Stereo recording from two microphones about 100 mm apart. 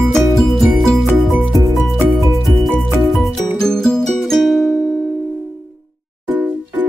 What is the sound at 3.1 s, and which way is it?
Music, centre (ahead or behind).